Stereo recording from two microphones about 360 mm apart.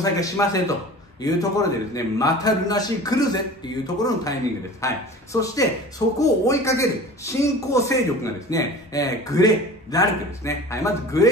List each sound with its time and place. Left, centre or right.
0.0 s a man's voice: centre